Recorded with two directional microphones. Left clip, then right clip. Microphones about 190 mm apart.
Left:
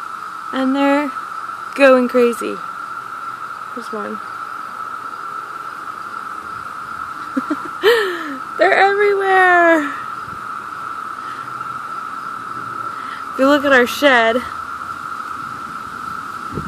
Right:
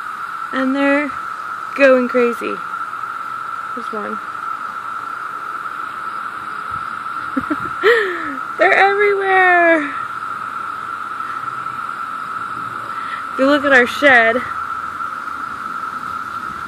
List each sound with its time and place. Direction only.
0.6 s speech: 10° left (ahead or behind)
7.8 s a sound: 5° left (ahead or behind)
13.4 s speech: 10° left (ahead or behind)